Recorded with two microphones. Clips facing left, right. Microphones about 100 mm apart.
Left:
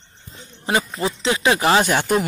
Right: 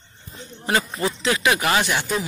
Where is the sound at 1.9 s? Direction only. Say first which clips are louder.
Left 5 dB; 50° left (ahead or behind).